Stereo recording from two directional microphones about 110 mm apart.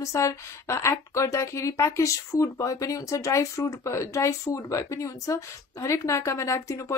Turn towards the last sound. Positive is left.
turn(degrees=25)  # may be behind; listen again after turning